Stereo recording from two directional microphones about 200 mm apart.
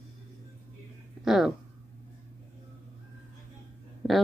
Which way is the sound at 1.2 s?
Centre (ahead or behind).